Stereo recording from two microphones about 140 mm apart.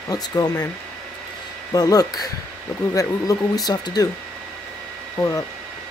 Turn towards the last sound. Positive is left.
turn(degrees=20)  # may be behind; listen again after turning